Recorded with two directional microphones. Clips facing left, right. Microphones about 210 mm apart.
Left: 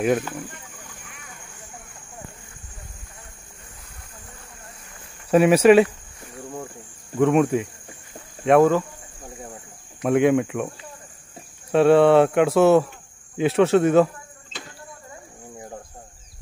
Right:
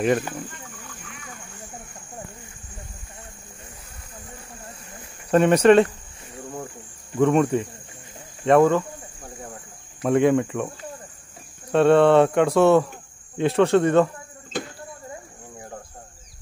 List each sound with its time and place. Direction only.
5.3 s speech: 5° left (ahead or behind)
7.2 s speech: centre (ahead or behind)
10.0 s speech: centre (ahead or behind)
11.7 s speech: 5° left (ahead or behind)
14.5 s a sound: 50° right (ahead or behind)